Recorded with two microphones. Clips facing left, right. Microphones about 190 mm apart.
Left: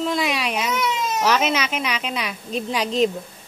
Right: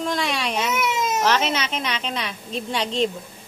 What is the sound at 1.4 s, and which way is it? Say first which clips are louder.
Speech: left 2 dB; 30° right (ahead or behind).